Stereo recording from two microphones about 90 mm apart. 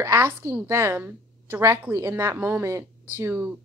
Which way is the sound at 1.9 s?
30° right (ahead or behind).